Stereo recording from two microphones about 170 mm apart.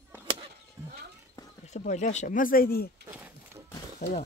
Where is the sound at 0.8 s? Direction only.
20° right (ahead or behind).